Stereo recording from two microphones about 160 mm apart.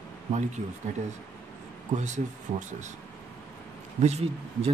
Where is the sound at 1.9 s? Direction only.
50° right (ahead or behind).